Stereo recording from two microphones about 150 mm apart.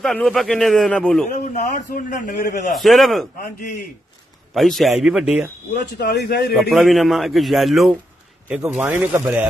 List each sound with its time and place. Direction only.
0.0 s a man's voice: 5° left (ahead or behind)
1.5 s a man's voice: 50° left (ahead or behind)
2.7 s a man's voice: centre (ahead or behind)
3.3 s a man's voice: 65° left (ahead or behind)
4.6 s a man's voice: centre (ahead or behind)
5.7 s a man's voice: 90° left
6.7 s a man's voice: centre (ahead or behind)